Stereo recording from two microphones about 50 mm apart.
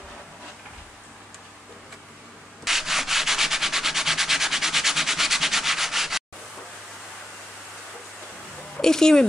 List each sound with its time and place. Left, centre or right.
2.6 s sanding: centre
8.7 s speech: centre